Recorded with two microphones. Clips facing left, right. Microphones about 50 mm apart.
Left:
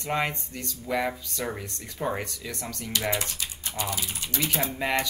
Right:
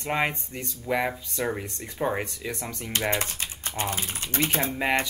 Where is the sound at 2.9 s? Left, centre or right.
Right.